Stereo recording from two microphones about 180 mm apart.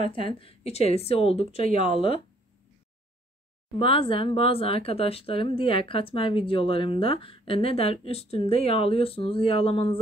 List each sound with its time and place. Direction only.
0.0 s speech: 30° left (ahead or behind)
3.7 s speech: 30° left (ahead or behind)